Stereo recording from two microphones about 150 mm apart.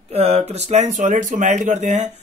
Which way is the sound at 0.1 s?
45° right (ahead or behind).